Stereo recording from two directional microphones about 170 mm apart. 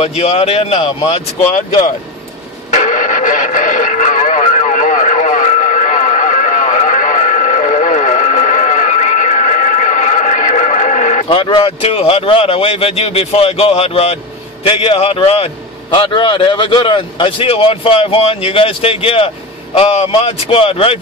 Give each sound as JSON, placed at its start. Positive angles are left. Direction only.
{"t": 0.0, "sound": "a man's voice", "side_deg": 35}
{"t": 1.5, "sound": "speech", "side_deg": 45}
{"t": 2.7, "sound": "radio", "side_deg": 50}
{"t": 11.2, "sound": "a man's voice", "side_deg": 30}